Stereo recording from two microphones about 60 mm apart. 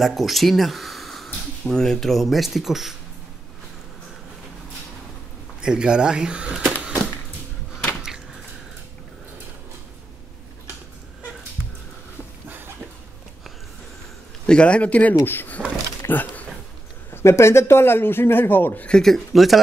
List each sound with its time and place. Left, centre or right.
0.0 s speech: centre
5.6 s speech: centre
14.4 s a man's voice: centre; by 15.6 s left
16.1 s a sound: left
17.1 s a man's voice: left
18.9 s speech: centre